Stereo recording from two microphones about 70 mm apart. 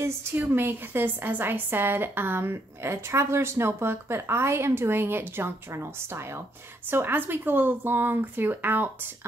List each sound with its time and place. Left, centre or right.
0.4 s a woman's voice: right